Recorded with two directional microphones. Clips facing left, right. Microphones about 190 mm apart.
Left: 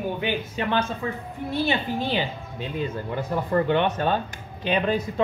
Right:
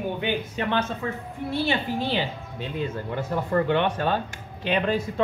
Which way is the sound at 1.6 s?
15° left (ahead or behind).